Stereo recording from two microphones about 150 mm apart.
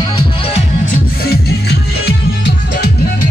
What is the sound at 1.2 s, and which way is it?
Music, 90° left.